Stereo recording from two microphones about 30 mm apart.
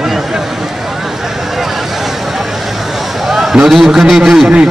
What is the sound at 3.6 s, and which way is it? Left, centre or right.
Speech, centre.